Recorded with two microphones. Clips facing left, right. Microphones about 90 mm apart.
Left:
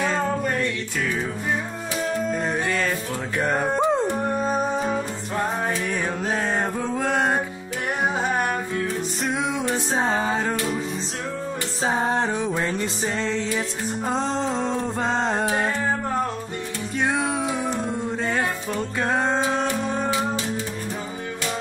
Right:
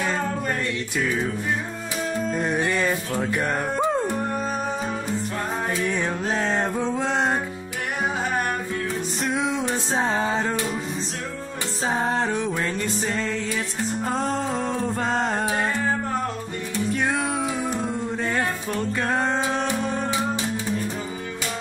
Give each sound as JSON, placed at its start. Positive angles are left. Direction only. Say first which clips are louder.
{"t": 2.3, "sound": "music", "louder": "right 1 dB", "side_deg": -10}
{"t": 3.4, "sound": "music", "louder": "left 2 dB", "side_deg": 15}
{"t": 5.9, "sound": "music", "louder": "even", "side_deg": 10}
{"t": 9.2, "sound": "music", "louder": "right 1 dB", "side_deg": 0}
{"t": 11.8, "sound": "a sound", "louder": "left 1 dB", "side_deg": 0}
{"t": 12.5, "sound": "music", "louder": "left 1 dB", "side_deg": 15}
{"t": 13.0, "sound": "a sound", "louder": "left 1 dB", "side_deg": 0}
{"t": 14.5, "sound": "a sound", "louder": "even", "side_deg": 0}
{"t": 16.9, "sound": "music", "louder": "left 2 dB", "side_deg": 5}